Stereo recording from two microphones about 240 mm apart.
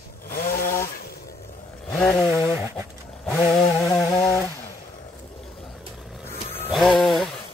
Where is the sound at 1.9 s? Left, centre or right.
Centre.